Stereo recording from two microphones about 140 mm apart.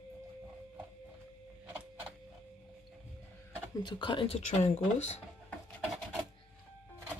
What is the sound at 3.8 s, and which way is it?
Speech, 35° left (ahead or behind).